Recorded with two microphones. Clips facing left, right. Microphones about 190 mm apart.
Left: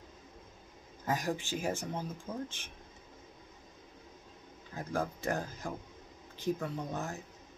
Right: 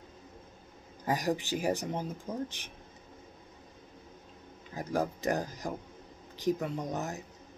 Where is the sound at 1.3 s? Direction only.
15° right (ahead or behind).